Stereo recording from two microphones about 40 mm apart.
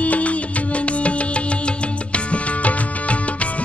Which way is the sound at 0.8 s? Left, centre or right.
Left.